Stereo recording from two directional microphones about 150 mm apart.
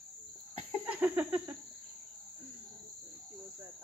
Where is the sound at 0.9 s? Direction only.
10° right (ahead or behind).